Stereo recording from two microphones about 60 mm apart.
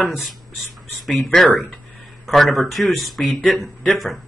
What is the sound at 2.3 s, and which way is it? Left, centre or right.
Speech, centre.